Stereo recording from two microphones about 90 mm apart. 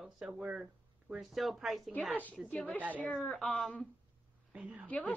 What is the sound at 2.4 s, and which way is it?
Speech, 15° left (ahead or behind).